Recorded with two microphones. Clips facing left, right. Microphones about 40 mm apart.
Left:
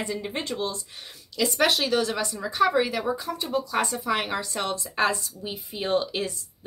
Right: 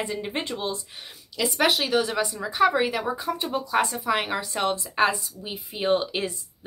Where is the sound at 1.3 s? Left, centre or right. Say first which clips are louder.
Even; centre.